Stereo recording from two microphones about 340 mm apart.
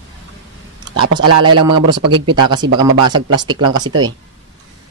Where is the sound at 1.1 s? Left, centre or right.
Right.